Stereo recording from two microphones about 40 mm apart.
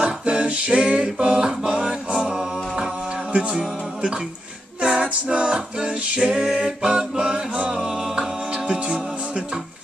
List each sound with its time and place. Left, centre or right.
0.0 s singing: right
1.2 s music: centre
3.3 s music: right
4.8 s a capella: right